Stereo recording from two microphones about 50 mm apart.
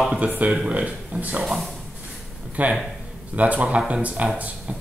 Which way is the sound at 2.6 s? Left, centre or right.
Right.